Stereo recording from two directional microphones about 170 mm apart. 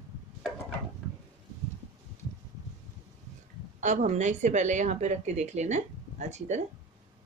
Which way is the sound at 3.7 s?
45° right (ahead or behind).